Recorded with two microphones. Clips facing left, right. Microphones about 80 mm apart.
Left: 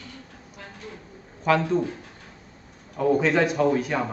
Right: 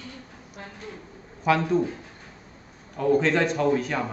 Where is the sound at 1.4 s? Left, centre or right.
Centre.